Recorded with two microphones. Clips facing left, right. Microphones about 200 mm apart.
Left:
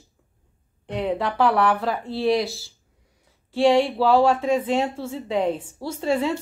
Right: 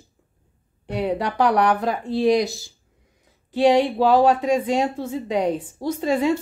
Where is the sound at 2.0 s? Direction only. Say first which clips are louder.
Right 4 dB; 15° right (ahead or behind).